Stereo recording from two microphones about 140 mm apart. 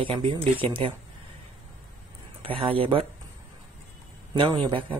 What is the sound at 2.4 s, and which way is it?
Speech, 40° right (ahead or behind).